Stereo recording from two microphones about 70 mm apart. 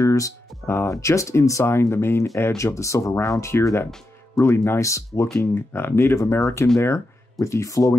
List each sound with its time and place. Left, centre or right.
0.0 s music: left
0.7 s speech: left
5.4 s speech: left
6.1 s speech: left